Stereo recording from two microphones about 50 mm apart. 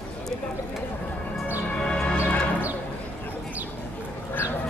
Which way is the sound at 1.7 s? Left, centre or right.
Centre.